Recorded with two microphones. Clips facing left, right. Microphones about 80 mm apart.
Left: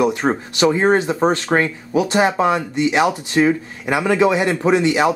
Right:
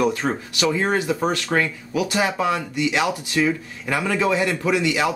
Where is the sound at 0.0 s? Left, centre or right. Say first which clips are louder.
Left 4 dB; left.